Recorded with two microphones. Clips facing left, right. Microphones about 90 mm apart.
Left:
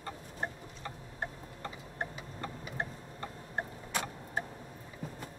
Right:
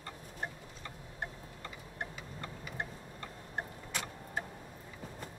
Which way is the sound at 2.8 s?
35° left (ahead or behind).